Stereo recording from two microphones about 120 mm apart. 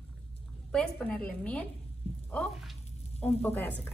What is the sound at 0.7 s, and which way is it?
Speech, 5° left (ahead or behind).